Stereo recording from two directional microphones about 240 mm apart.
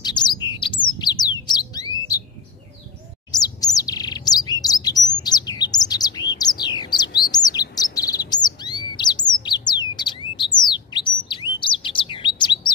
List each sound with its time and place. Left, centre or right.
0.0 s bird: centre
1.5 s alarm: centre
3.3 s bird: centre
7.7 s chirp: centre
8.5 s bird: centre